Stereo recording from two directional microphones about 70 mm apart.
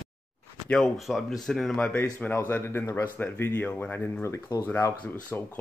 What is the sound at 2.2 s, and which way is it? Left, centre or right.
Speech, left.